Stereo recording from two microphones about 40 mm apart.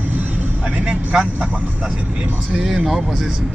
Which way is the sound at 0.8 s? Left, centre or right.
Centre.